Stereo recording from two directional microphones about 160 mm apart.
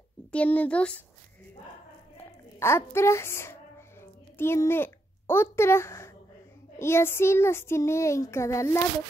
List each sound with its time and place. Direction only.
0.3 s speech: 10° left (ahead or behind)
2.6 s a woman's voice: 15° left (ahead or behind)